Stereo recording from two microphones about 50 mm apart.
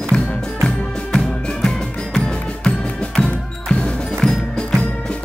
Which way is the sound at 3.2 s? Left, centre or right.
Centre.